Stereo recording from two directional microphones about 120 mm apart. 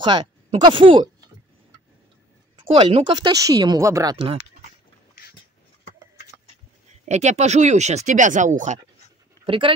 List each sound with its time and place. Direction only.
0.0 s speech: 40° right (ahead or behind)
2.5 s speech: 45° right (ahead or behind)
7.1 s speech: 70° right (ahead or behind); by 8.7 s 90° right
9.5 s speech: 45° right (ahead or behind)